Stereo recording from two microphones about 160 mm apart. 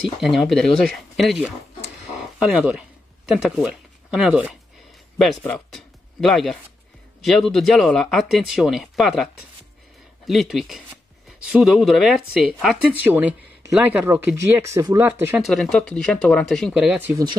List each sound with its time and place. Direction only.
0.2 s speech: centre (ahead or behind)
5.2 s speech: 5° left (ahead or behind)
14.0 s speech: 15° right (ahead or behind)
15.4 s speech: 5° left (ahead or behind)
16.8 s speech: 10° right (ahead or behind)